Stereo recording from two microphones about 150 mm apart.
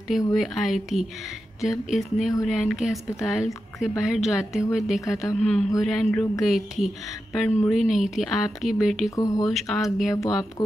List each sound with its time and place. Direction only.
0.4 s speech: centre (ahead or behind)
9.1 s speech: 25° left (ahead or behind)
9.5 s speech: centre (ahead or behind)